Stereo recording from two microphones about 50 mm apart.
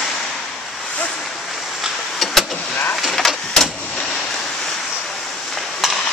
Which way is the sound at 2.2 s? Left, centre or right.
Centre.